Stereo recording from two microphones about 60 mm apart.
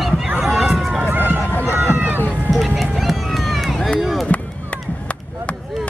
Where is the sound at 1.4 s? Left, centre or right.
Left.